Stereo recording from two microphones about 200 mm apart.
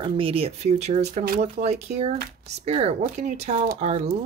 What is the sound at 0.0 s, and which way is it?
Speech, 25° right (ahead or behind).